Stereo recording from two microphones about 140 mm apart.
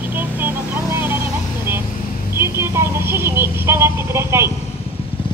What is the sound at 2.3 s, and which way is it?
Speech, 20° right (ahead or behind).